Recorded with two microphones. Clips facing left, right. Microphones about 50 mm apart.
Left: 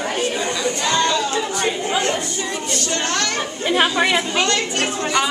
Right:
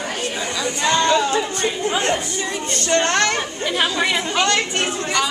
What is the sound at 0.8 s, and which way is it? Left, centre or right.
Speech, right.